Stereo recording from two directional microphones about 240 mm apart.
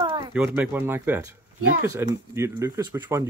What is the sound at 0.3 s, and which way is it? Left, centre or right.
Speech, centre.